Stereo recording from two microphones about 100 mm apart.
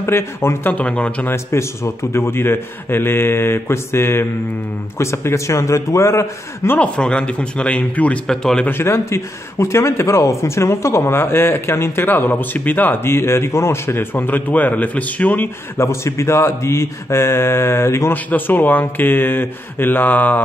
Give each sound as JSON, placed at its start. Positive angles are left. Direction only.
{"t": 0.0, "sound": "a man's voice", "side_deg": 25}
{"t": 0.7, "sound": "speech", "side_deg": 15}
{"t": 1.3, "sound": "a man's voice", "side_deg": 30}
{"t": 6.8, "sound": "speech", "side_deg": 10}
{"t": 8.6, "sound": "a man's voice", "side_deg": 25}